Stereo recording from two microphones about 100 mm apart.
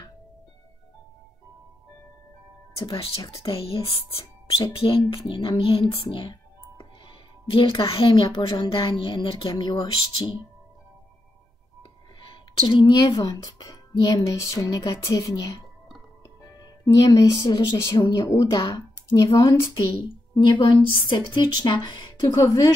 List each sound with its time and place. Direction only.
3.3 s speech: 70° left (ahead or behind)
4.7 s music: 65° left (ahead or behind)
8.1 s a woman's voice: 50° left (ahead or behind)
8.6 s music: 55° left (ahead or behind)
9.5 s a woman's voice: 45° left (ahead or behind)
12.6 s a woman's voice: 50° left (ahead or behind)
13.0 s a woman's voice: 40° left (ahead or behind)
16.8 s a woman's voice: 35° left (ahead or behind)
17.3 s a woman's voice: 45° left (ahead or behind)
18.4 s a woman's voice: 40° left (ahead or behind)